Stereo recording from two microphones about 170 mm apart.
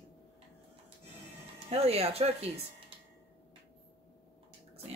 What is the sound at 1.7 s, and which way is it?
Speech, 35° right (ahead or behind).